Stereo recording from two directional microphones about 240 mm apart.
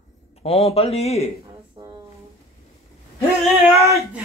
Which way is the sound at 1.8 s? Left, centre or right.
Right.